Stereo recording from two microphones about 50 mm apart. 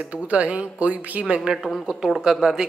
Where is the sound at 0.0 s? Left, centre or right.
Right.